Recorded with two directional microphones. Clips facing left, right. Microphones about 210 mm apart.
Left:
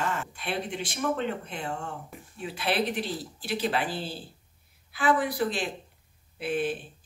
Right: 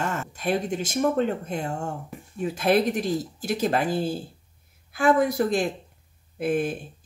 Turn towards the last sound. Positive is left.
turn(degrees=-45)  # may be behind; listen again after turning